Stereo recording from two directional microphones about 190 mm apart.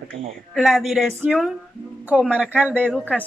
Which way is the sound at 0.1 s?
30° right (ahead or behind).